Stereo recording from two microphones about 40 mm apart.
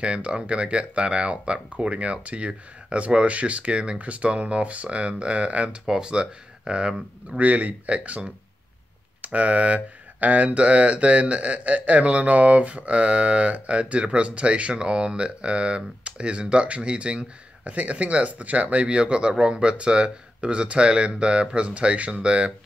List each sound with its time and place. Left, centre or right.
0.0 s speech: right
5.9 s speech: centre
7.3 s speech: right